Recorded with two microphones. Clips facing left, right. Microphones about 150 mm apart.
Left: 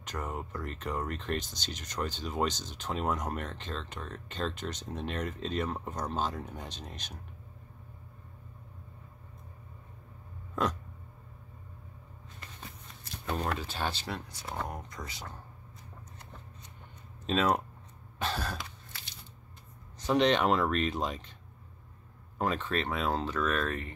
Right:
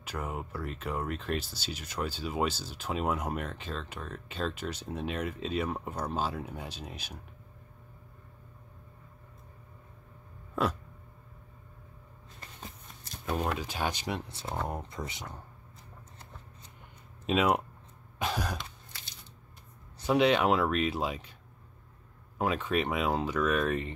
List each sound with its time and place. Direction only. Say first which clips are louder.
0.0 s speech: right 1 dB; 5° right (ahead or behind)
10.5 s a sound: right 1 dB; 10° right (ahead or behind)
13.2 s speech: right 2 dB; 5° right (ahead or behind)
17.3 s speech: right 1 dB; 10° right (ahead or behind)
18.2 s cough: right 2 dB; 10° right (ahead or behind)
20.0 s speech: right 1 dB; 10° right (ahead or behind)
22.4 s speech: right 2 dB; 10° right (ahead or behind)